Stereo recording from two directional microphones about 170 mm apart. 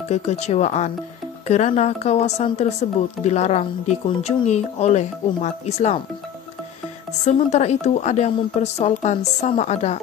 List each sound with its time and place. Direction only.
0.1 s speech: 40° left (ahead or behind)
7.2 s speech: 40° left (ahead or behind)